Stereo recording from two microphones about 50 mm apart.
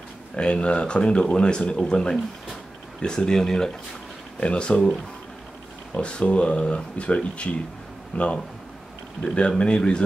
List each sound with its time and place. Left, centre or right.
0.4 s speech: left
4.4 s speech: left
5.9 s speech: left